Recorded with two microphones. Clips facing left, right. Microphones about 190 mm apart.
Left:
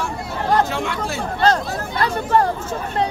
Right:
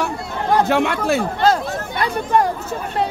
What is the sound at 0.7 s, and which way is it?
Speech, 60° right (ahead or behind).